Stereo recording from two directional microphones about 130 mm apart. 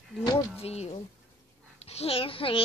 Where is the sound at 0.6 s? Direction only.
55° left (ahead or behind).